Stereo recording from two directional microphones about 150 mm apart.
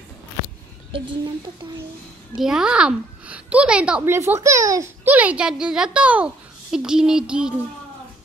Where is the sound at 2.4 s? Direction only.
5° right (ahead or behind).